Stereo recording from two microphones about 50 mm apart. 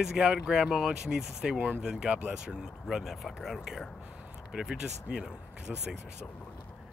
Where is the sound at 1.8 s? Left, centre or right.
Centre.